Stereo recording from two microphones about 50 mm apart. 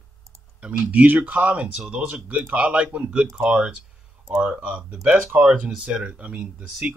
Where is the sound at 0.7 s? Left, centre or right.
Right.